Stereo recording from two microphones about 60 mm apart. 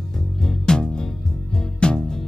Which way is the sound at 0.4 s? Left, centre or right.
Centre.